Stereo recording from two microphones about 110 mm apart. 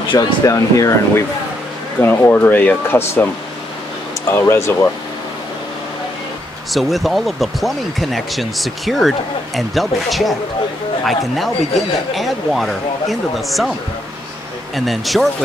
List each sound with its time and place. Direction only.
0.1 s speech: 35° left (ahead or behind)
2.0 s speech: 20° left (ahead or behind)
4.3 s speech: 25° left (ahead or behind)
6.7 s speech: centre (ahead or behind)
14.9 s speech: centre (ahead or behind)